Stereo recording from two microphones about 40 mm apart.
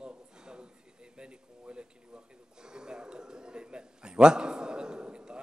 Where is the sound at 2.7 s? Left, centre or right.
Centre.